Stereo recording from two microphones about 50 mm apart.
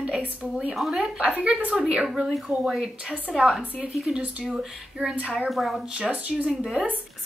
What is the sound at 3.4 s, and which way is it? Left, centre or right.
Speech, centre.